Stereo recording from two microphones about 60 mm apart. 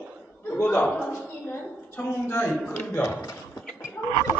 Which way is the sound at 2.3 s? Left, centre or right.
Left.